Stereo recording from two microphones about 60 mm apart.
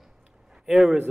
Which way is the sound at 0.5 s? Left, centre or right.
Centre.